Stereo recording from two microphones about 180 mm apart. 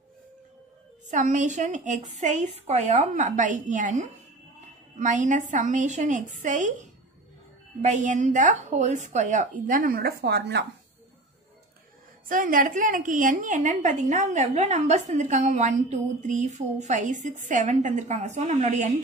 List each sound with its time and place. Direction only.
1.1 s a woman's voice: 45° right (ahead or behind); by 10.6 s 65° right (ahead or behind)
12.3 s a woman's voice: 50° right (ahead or behind)